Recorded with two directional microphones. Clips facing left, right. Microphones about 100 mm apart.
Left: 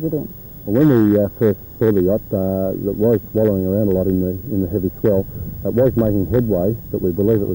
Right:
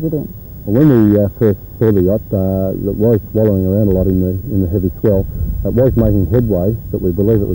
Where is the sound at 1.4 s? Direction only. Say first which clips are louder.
Right 3 dB; 20° right (ahead or behind).